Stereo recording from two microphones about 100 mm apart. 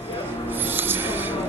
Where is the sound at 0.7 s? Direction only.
20° right (ahead or behind).